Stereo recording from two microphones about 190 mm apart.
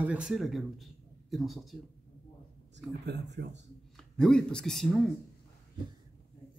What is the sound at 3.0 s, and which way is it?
Speech, 65° right (ahead or behind).